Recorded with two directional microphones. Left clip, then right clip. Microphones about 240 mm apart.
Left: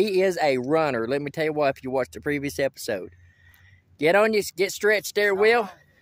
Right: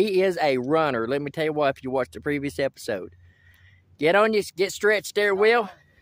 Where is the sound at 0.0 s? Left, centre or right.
Centre.